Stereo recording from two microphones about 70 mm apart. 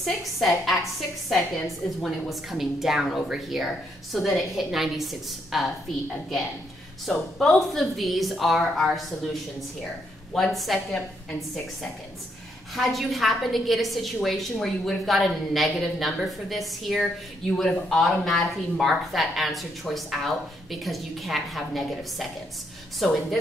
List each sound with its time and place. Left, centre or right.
0.0 s a woman's voice: centre
7.1 s a woman's voice: centre
11.0 s a woman's voice: left
12.7 s a woman's voice: centre